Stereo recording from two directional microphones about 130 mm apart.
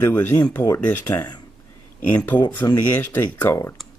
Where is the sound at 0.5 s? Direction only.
25° left (ahead or behind).